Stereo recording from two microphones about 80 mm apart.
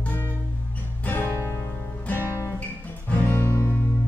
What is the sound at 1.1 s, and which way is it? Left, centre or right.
Music, left.